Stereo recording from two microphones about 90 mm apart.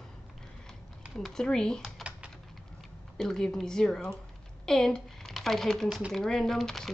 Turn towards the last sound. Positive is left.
turn(degrees=5)  # may be behind; listen again after turning